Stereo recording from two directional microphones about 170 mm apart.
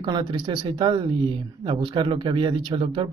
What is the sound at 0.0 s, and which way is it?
Speech, 25° right (ahead or behind).